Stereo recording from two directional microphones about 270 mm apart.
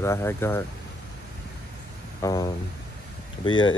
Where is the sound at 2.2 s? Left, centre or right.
Centre.